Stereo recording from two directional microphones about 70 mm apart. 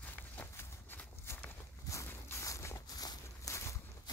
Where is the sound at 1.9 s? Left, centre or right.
Left.